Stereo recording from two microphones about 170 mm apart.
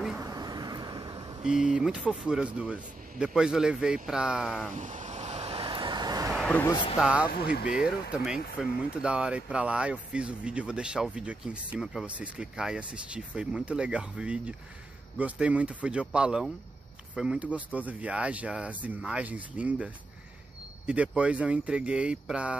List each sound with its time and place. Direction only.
0.2 s vehicle: 20° right (ahead or behind)
1.4 s speech: 5° right (ahead or behind)
4.7 s vehicle: 45° right (ahead or behind); by 6.3 s 20° right (ahead or behind)
6.3 s a sound: 10° left (ahead or behind)
7.0 s speech: 5° right (ahead or behind)